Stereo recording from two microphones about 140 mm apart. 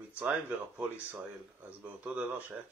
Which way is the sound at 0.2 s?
15° right (ahead or behind).